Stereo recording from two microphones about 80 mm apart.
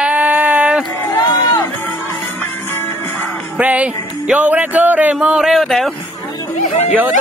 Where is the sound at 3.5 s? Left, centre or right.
Centre.